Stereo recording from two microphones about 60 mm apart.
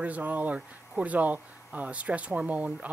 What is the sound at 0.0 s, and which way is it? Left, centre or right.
Speech, right.